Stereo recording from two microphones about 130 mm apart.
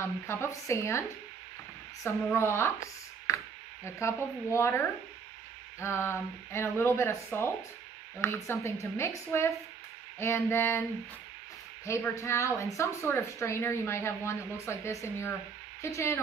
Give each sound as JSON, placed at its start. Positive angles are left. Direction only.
{"t": 0.0, "sound": "speech", "side_deg": 20}
{"t": 2.0, "sound": "speech", "side_deg": 20}